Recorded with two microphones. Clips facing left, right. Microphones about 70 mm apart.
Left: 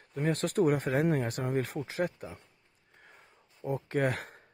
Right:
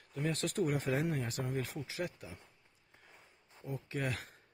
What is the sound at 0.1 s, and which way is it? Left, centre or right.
Speech, left.